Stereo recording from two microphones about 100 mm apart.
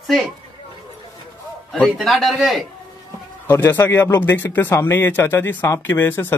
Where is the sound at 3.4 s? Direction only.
20° left (ahead or behind).